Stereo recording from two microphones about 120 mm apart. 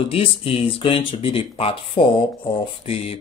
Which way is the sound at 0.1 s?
50° left (ahead or behind).